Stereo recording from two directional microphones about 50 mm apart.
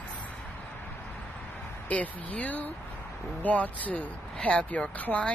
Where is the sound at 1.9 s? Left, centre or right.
Left.